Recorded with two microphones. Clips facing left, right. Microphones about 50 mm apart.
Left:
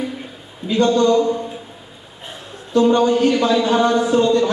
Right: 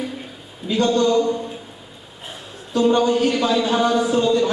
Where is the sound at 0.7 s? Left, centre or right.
Centre.